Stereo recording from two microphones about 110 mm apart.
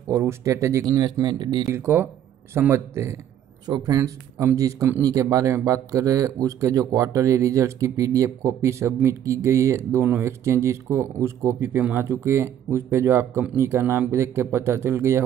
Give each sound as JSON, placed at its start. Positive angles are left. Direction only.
{"t": 0.1, "sound": "speech", "side_deg": -25}
{"t": 1.7, "sound": "speech", "side_deg": -20}
{"t": 3.6, "sound": "speech", "side_deg": -35}